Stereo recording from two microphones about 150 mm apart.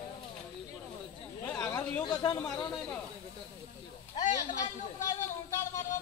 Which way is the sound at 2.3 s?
25° left (ahead or behind).